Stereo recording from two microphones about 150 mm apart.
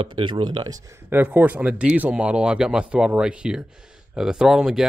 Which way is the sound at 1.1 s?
10° right (ahead or behind).